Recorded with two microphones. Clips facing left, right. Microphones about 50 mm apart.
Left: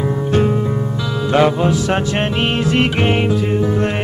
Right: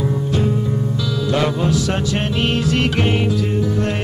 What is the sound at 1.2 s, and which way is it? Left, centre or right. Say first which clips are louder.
Music: left 6 dB; left.